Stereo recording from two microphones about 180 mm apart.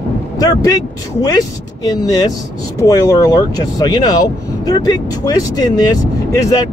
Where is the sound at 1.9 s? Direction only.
20° left (ahead or behind).